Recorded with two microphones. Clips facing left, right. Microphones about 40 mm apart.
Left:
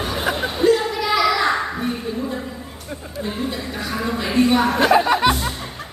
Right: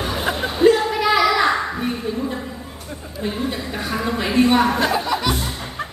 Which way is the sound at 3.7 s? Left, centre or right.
Right.